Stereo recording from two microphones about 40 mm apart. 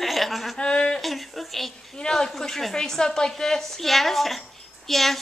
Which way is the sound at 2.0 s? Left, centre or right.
Centre.